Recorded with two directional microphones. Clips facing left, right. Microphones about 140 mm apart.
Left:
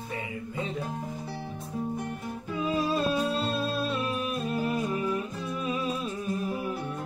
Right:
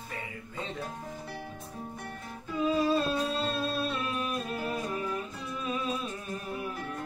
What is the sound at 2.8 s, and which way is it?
Music, 10° left (ahead or behind).